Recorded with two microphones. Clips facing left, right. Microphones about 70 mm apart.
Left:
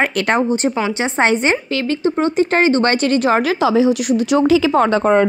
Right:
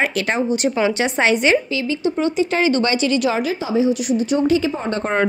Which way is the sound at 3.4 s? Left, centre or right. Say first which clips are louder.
Left 5 dB; left.